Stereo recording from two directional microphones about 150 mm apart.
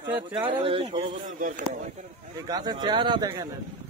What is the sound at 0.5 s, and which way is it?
Speech, 35° right (ahead or behind).